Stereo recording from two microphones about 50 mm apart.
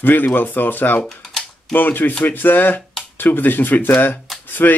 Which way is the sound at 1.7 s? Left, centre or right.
Left.